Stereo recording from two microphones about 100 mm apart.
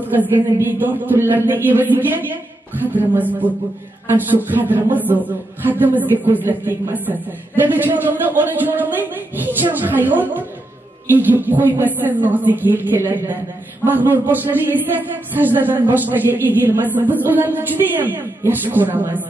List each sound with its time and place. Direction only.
0.0 s a man's voice: 20° right (ahead or behind)